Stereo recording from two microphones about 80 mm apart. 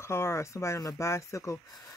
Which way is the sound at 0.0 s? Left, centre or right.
Left.